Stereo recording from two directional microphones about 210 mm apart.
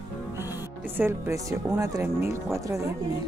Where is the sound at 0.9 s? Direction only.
10° right (ahead or behind).